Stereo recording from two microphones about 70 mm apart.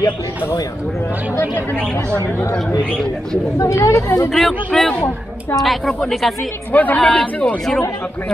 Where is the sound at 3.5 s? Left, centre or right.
Left.